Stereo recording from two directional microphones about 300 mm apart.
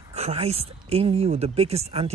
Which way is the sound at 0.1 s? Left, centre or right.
Right.